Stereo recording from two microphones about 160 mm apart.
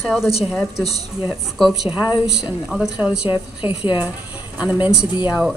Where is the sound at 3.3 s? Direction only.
30° left (ahead or behind).